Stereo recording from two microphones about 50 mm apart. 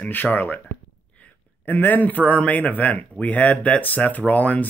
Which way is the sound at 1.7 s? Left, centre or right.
Left.